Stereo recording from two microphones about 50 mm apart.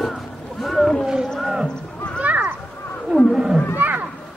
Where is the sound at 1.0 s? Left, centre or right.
Centre.